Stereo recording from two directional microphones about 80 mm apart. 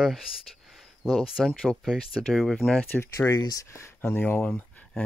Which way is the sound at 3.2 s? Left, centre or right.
Left.